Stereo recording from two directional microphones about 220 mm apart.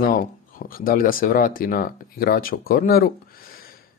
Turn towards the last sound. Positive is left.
turn(degrees=40)  # may be behind; listen again after turning